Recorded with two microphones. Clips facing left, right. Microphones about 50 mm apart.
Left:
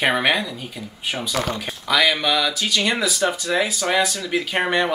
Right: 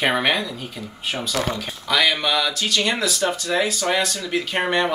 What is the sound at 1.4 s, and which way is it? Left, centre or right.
Speech, centre.